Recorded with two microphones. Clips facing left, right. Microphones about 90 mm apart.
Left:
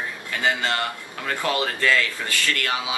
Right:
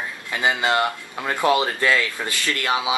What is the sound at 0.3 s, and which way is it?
Speech, 15° right (ahead or behind).